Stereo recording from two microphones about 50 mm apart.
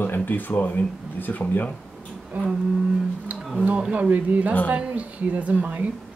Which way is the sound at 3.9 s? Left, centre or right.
Right.